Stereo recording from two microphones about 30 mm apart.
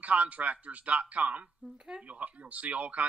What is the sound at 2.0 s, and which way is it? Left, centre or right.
Speech, right.